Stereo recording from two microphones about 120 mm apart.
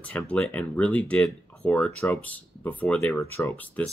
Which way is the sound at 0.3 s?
10° left (ahead or behind).